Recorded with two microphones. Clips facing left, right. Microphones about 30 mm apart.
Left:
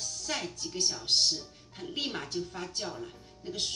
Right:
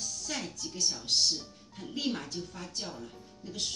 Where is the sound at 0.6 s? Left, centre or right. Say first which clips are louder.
Left 1 dB; left.